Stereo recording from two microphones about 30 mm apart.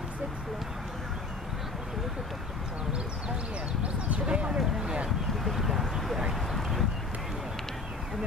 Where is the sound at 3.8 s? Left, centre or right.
Right.